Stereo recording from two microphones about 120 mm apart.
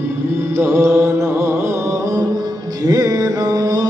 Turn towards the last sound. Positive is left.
turn(degrees=-35)  # may be behind; listen again after turning